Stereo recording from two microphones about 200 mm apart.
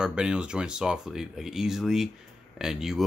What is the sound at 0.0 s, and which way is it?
Speech, 5° right (ahead or behind).